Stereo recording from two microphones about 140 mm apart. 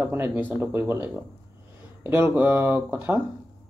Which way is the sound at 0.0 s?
15° right (ahead or behind).